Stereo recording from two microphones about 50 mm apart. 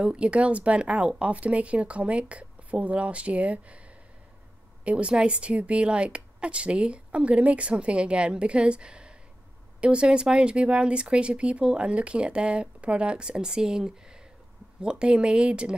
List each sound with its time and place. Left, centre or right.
0.0 s speech: right
4.8 s speech: right